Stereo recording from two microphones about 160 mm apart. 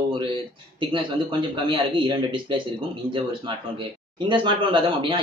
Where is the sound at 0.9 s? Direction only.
30° right (ahead or behind).